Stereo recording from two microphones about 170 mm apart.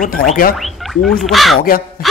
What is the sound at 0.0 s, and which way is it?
Speech, 55° left (ahead or behind).